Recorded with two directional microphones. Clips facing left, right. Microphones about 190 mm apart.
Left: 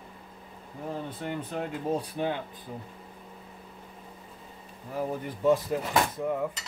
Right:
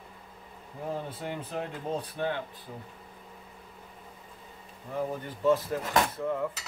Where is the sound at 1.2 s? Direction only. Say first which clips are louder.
Left 2 dB; centre (ahead or behind).